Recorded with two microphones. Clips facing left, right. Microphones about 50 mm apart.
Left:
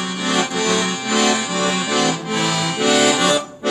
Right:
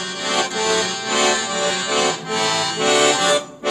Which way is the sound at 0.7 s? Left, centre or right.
Left.